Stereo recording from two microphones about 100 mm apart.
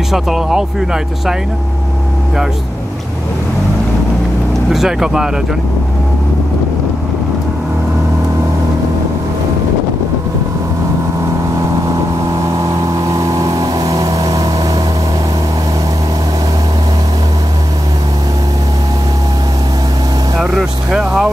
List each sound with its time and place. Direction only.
0.1 s speech: 5° right (ahead or behind)
4.6 s speech: 5° right (ahead or behind)
12.3 s vehicle: 35° right (ahead or behind)
20.3 s speech: 5° right (ahead or behind)